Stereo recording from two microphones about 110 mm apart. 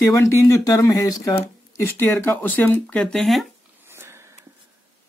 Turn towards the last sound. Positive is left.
turn(degrees=-25)  # may be behind; listen again after turning